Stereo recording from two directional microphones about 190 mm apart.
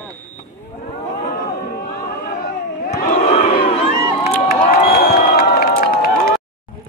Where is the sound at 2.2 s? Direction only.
50° left (ahead or behind).